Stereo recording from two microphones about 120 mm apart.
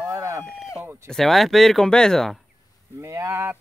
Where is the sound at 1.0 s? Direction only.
Centre (ahead or behind).